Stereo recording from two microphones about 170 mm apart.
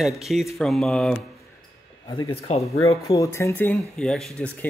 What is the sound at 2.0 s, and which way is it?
A man's voice, 25° left (ahead or behind).